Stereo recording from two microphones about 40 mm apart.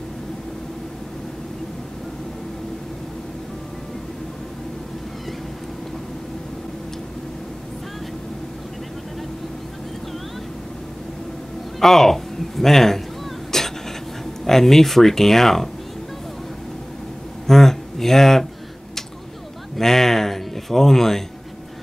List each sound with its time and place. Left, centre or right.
11.8 s speech: centre
13.5 s a sound: centre
14.4 s speech: centre
17.5 s speech: centre
19.8 s speech: centre